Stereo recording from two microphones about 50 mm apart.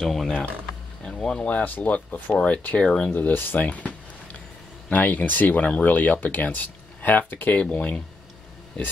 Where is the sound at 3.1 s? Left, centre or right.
Left.